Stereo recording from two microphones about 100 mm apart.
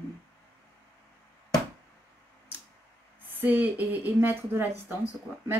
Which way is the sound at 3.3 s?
20° right (ahead or behind).